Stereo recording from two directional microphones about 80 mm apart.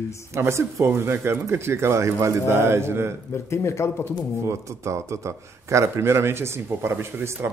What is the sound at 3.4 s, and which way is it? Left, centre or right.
Speech, left.